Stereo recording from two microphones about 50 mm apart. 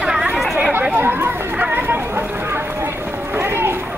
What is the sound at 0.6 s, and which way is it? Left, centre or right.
Chatter, right.